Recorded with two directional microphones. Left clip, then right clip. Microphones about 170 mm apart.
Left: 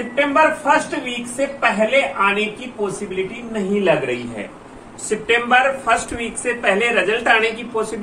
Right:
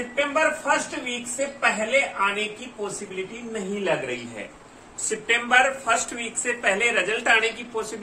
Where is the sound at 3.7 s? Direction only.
5° right (ahead or behind).